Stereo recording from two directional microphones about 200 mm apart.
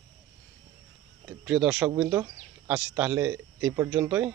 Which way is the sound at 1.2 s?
5° right (ahead or behind).